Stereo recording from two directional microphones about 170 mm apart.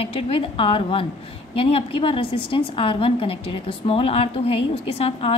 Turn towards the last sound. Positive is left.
turn(degrees=35)  # may be behind; listen again after turning